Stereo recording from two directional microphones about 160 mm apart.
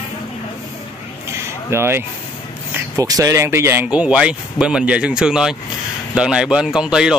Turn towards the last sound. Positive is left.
turn(degrees=-5)  # may be behind; listen again after turning